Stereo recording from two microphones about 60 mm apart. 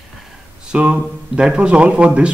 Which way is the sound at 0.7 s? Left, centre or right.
Centre.